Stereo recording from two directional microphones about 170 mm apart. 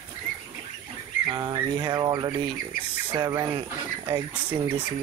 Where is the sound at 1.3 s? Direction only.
25° right (ahead or behind).